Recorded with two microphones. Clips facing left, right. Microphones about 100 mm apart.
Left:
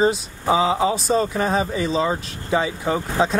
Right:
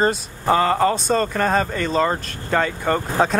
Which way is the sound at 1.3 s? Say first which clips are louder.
Right 1 dB; 65° right (ahead or behind).